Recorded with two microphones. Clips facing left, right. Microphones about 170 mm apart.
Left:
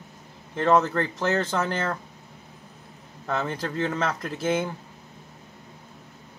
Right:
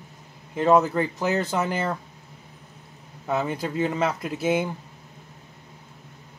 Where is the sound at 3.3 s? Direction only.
5° right (ahead or behind).